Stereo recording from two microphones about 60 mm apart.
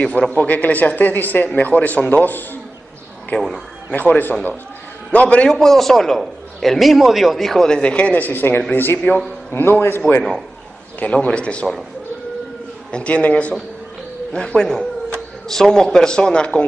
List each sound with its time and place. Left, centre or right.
0.3 s a man's voice: left
3.3 s a man's voice: centre
3.9 s a man's voice: left
5.5 s a man's voice: centre; by 10.0 s left
11.0 s a man's voice: centre
12.9 s a man's voice: left